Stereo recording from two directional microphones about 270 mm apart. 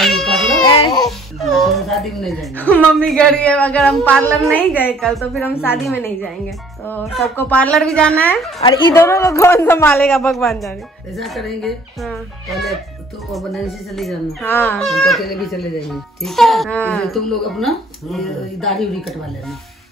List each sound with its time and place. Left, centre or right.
0.0 s baby cry: centre
0.7 s babbling: centre
1.0 s speech: centre
8.6 s a man's voice: centre